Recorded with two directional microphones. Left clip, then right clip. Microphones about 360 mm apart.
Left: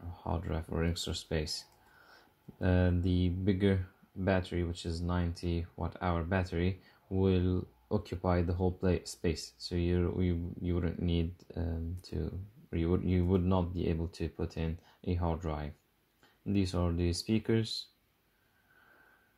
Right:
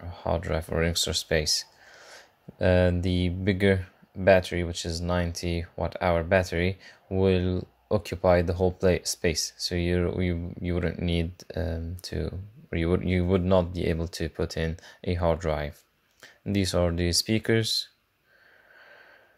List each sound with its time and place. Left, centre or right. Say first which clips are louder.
0.1 s speech: right 11 dB; right